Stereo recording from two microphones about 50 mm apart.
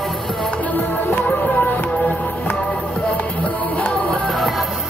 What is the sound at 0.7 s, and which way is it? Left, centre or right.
Music, left.